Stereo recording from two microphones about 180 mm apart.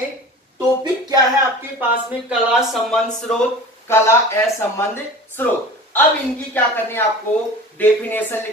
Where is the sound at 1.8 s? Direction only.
5° right (ahead or behind).